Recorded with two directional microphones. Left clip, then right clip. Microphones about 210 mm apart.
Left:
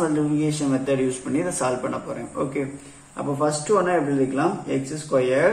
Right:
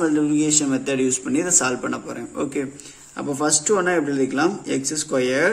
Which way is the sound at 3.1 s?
50° right (ahead or behind).